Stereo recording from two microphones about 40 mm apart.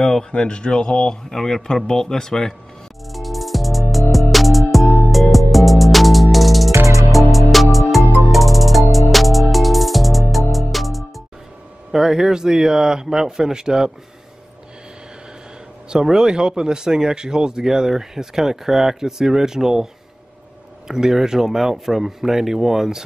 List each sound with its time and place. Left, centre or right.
0.3 s a man's voice: left
3.1 s music: centre
4.8 s music: left
5.1 s music: centre
11.9 s speech: centre
15.9 s speech: centre
20.9 s speech: centre